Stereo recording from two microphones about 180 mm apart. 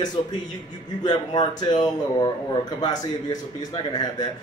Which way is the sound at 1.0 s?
25° left (ahead or behind).